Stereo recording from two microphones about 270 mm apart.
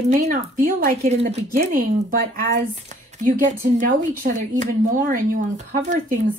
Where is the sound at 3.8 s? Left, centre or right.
Right.